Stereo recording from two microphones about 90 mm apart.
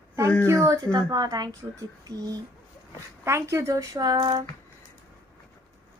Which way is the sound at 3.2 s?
30° right (ahead or behind).